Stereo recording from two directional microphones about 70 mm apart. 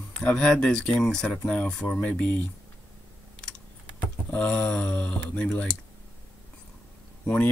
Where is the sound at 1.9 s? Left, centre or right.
Left.